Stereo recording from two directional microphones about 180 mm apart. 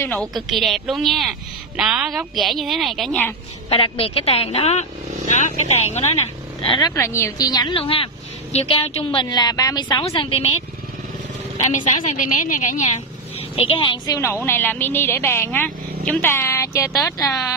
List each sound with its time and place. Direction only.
0.0 s a woman's voice: 5° left (ahead or behind)
3.7 s a woman's voice: 30° left (ahead or behind)
7.0 s a woman's voice: 15° left (ahead or behind); by 10.5 s 30° left (ahead or behind)
11.5 s a woman's voice: 40° left (ahead or behind)
13.6 s a woman's voice: 30° left (ahead or behind)